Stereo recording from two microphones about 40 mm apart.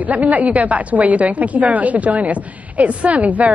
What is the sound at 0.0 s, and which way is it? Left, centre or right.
A woman's voice, right.